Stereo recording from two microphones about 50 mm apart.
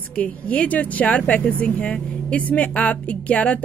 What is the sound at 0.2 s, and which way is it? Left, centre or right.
Speech, left.